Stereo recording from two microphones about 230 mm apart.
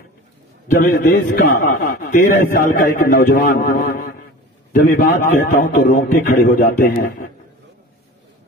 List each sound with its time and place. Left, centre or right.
0.8 s a man's voice: left